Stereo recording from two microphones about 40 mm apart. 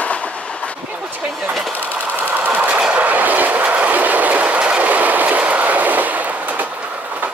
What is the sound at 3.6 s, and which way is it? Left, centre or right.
Train, right.